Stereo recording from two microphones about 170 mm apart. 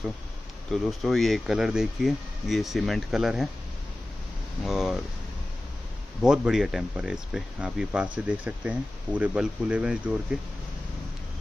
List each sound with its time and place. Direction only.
0.7 s speech: centre (ahead or behind)
4.6 s speech: centre (ahead or behind)
6.2 s speech: 5° right (ahead or behind)